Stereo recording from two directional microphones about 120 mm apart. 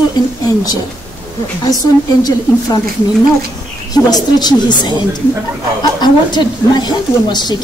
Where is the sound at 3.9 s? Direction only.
35° left (ahead or behind).